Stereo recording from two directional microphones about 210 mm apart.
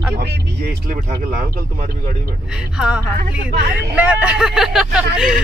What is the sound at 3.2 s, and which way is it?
Speech, 50° right (ahead or behind).